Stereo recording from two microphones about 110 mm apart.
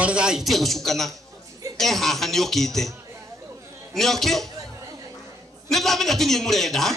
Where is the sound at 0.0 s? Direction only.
10° right (ahead or behind).